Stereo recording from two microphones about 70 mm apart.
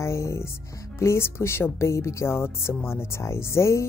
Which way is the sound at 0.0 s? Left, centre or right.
Left.